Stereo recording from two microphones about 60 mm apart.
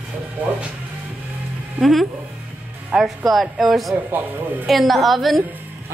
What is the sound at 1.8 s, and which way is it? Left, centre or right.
Speech, centre.